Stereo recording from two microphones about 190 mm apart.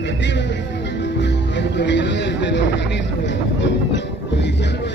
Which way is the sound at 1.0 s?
70° left (ahead or behind).